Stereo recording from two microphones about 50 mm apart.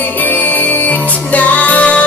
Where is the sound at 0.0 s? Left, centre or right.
Left.